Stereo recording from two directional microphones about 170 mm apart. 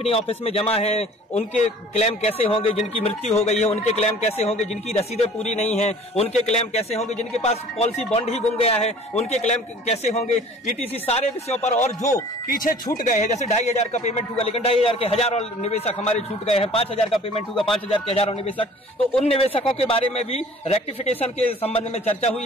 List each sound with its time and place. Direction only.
0.0 s a man's voice: 35° left (ahead or behind)
12.4 s a man's voice: 55° left (ahead or behind); by 22.3 s 40° left (ahead or behind)